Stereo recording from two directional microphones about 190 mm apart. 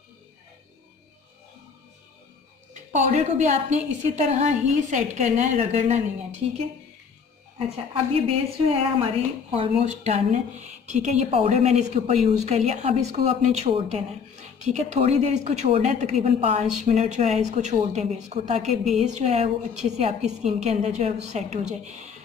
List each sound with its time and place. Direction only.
2.7 s speech: 40° right (ahead or behind)
7.5 s a woman's voice: 30° right (ahead or behind)